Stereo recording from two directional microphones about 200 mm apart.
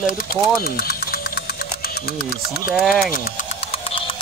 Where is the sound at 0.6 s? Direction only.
50° left (ahead or behind).